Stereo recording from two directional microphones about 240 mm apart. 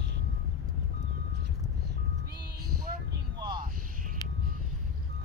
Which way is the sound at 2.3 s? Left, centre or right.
Right.